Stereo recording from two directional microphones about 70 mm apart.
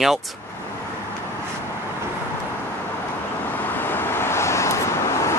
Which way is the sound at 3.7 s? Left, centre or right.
Left.